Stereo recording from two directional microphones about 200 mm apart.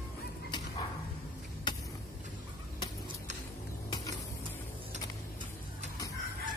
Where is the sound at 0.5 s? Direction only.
20° left (ahead or behind).